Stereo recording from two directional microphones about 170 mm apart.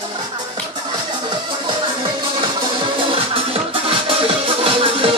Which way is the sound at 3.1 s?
35° right (ahead or behind).